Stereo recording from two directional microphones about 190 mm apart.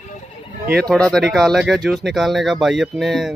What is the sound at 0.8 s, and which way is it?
Speech, 5° left (ahead or behind).